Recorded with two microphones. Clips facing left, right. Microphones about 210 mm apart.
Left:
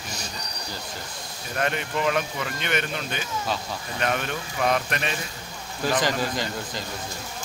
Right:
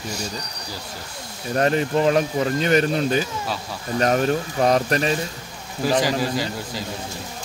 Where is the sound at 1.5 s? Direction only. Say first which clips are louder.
Right 8 dB; 35° right (ahead or behind).